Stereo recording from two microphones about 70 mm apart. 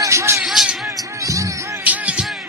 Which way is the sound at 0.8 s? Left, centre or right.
Right.